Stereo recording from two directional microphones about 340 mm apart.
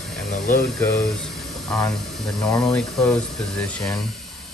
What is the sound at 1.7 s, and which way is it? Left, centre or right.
Speech, centre.